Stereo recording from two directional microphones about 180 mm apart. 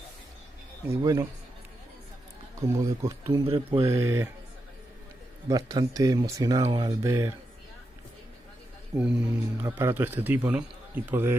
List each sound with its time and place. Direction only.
0.8 s speech: 20° right (ahead or behind)
2.5 s a man's voice: 15° right (ahead or behind)
3.4 s speech: 30° right (ahead or behind)
3.8 s a man's voice: 15° right (ahead or behind)
5.5 s a man's voice: 20° right (ahead or behind)
8.9 s a man's voice: 10° right (ahead or behind)